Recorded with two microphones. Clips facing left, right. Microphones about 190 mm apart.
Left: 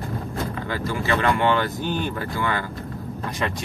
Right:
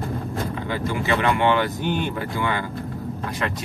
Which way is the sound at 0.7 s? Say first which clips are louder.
Right 1 dB; 20° right (ahead or behind).